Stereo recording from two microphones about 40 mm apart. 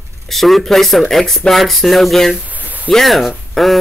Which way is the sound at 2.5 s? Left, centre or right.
Right.